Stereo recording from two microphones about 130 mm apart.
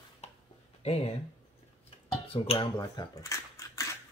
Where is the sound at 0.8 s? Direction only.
50° left (ahead or behind).